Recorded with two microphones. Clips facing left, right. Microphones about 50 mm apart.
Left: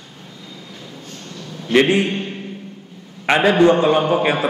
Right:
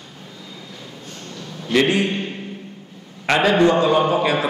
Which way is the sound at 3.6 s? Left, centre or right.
Left.